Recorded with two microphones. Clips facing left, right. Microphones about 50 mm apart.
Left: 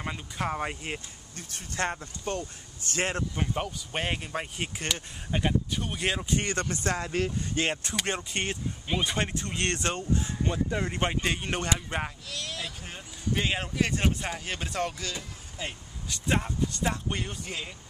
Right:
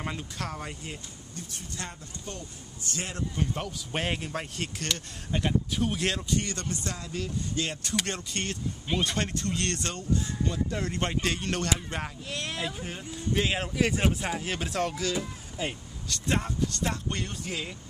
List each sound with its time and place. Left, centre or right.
0.4 s speech: left
3.3 s speech: centre
3.9 s speech: centre
6.2 s speech: left
8.1 s speech: centre
12.3 s speech: right
12.8 s speech: centre
16.1 s speech: centre